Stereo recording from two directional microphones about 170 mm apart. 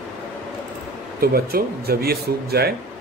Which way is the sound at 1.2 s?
65° right (ahead or behind).